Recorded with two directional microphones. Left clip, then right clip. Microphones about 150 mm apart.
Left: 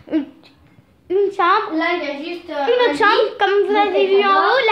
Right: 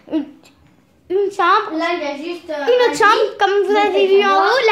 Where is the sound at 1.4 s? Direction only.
15° right (ahead or behind).